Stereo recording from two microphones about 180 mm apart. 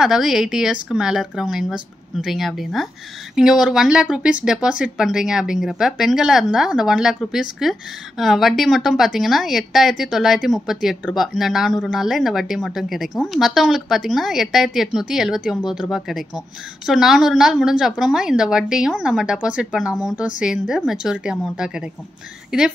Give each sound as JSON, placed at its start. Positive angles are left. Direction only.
{"t": 0.0, "sound": "a woman's voice", "side_deg": 0}